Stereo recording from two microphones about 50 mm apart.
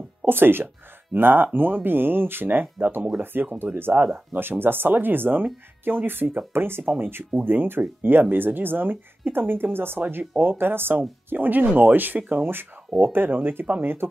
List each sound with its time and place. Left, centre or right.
0.2 s speech: right
9.9 s speech: right
10.6 s speech: right